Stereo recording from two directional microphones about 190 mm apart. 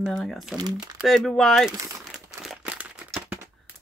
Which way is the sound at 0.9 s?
Centre (ahead or behind).